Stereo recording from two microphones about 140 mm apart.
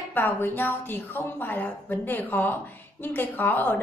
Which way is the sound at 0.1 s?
15° left (ahead or behind).